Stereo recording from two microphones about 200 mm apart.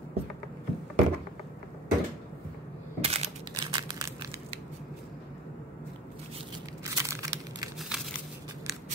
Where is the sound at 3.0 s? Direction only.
30° right (ahead or behind).